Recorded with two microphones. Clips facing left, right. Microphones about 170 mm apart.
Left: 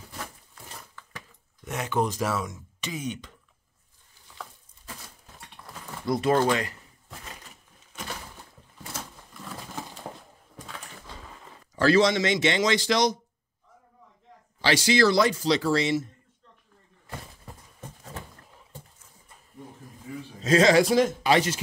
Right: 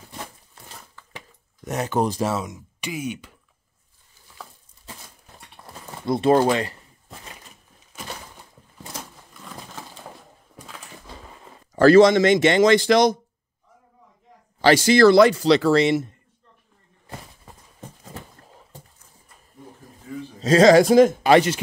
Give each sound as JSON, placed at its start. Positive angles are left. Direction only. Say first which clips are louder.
{"t": 1.6, "sound": "speech", "louder": "right 4 dB", "side_deg": -40}
{"t": 5.6, "sound": "a sound", "louder": "right 2 dB", "side_deg": -30}
{"t": 6.0, "sound": "speech", "louder": "right 5 dB", "side_deg": -30}
{"t": 9.4, "sound": "a sound", "louder": "left 1 dB", "side_deg": 0}
{"t": 11.7, "sound": "speech", "louder": "right 8 dB", "side_deg": -50}
{"t": 14.6, "sound": "speech", "louder": "right 7 dB", "side_deg": -50}
{"t": 20.4, "sound": "speech", "louder": "right 6 dB", "side_deg": -40}